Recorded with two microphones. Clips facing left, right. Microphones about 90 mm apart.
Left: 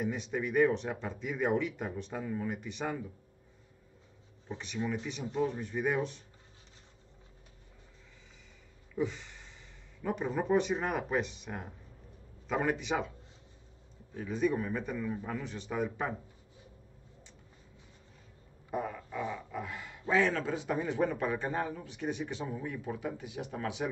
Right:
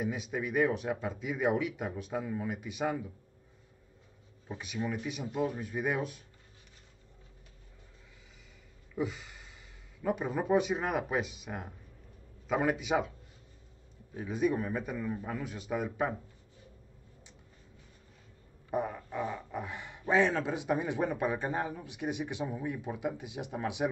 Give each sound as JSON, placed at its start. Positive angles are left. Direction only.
{"t": 0.0, "sound": "speech", "side_deg": -5}
{"t": 4.5, "sound": "a man's voice", "side_deg": -5}
{"t": 8.9, "sound": "a sound", "side_deg": -5}
{"t": 10.0, "sound": "a man's voice", "side_deg": -5}
{"t": 14.1, "sound": "a man's voice", "side_deg": -10}
{"t": 18.7, "sound": "speech", "side_deg": -20}